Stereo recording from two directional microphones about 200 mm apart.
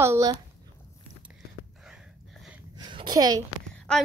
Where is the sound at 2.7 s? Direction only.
20° right (ahead or behind).